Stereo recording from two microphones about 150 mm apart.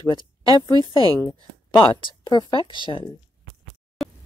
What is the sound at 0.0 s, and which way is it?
Speech, 30° left (ahead or behind).